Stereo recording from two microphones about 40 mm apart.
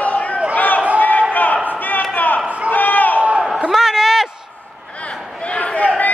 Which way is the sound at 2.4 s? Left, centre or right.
Right.